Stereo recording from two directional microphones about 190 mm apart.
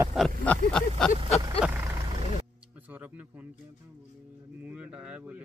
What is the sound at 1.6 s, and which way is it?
Vehicle, 10° right (ahead or behind).